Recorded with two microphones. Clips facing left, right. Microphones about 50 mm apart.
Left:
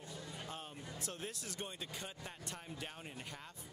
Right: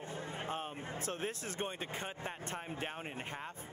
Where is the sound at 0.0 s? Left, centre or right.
Right.